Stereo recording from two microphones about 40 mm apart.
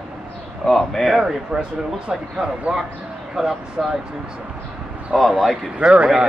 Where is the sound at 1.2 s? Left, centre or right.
Right.